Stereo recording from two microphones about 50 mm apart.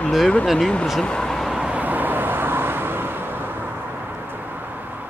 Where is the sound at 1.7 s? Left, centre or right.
Right.